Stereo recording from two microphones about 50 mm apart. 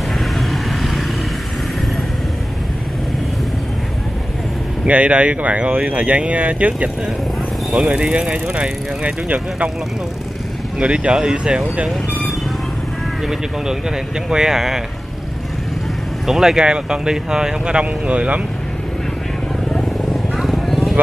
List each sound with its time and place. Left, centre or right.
0.2 s vehicle: centre
4.8 s speech: right
7.9 s speech: right
10.8 s speech: right
13.3 s speech: centre
16.3 s speech: centre; by 18.4 s right
20.1 s vehicle: centre